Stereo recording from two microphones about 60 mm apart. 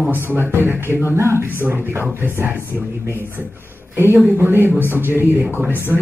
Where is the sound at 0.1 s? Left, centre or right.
Right.